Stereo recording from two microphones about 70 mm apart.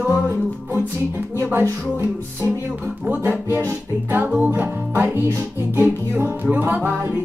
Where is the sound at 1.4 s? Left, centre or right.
Right.